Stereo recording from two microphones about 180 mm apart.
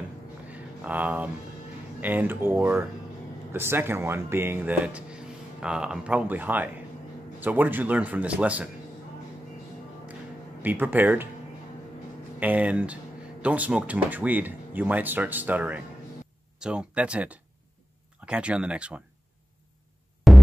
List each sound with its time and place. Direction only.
0.5 s a sound: 10° right (ahead or behind)
2.0 s speech: 10° right (ahead or behind)
10.6 s speech: 10° right (ahead or behind)
12.4 s speech: 10° right (ahead or behind)
20.3 s music: centre (ahead or behind)